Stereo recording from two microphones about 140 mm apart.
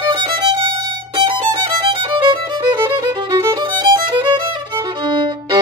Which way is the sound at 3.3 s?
30° right (ahead or behind).